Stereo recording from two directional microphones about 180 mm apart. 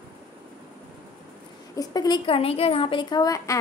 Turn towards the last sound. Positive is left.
turn(degrees=20)  # may be behind; listen again after turning